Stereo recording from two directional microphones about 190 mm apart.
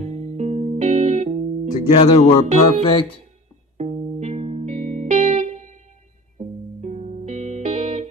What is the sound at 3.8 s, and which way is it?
Music, 35° right (ahead or behind).